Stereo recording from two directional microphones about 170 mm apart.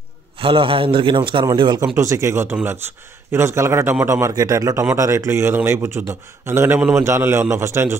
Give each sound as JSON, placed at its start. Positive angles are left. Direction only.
{"t": 0.4, "sound": "a man's voice", "side_deg": -30}